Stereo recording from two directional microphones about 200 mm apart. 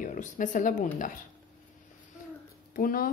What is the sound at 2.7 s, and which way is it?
Speech, 45° left (ahead or behind).